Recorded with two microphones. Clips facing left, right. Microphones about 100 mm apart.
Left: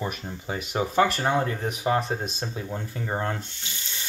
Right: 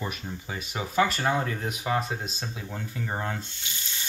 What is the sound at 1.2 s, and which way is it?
Speech, 30° left (ahead or behind).